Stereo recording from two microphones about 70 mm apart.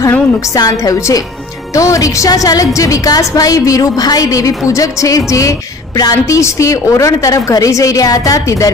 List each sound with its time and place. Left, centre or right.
0.6 s a woman's voice: left
5.9 s a woman's voice: left
6.4 s a woman's voice: left